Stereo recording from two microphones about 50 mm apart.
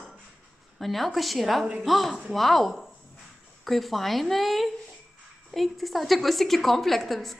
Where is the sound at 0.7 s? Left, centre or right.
Centre.